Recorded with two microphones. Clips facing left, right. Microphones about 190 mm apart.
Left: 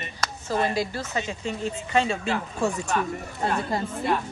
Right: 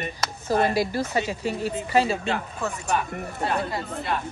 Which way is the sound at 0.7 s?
10° right (ahead or behind).